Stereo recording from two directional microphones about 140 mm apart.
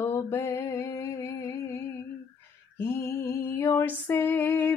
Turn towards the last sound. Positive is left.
turn(degrees=15)  # may be behind; listen again after turning